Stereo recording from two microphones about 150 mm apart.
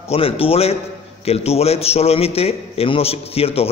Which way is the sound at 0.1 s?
40° left (ahead or behind).